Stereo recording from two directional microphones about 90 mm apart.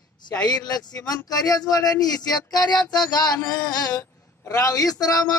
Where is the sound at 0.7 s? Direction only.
45° left (ahead or behind).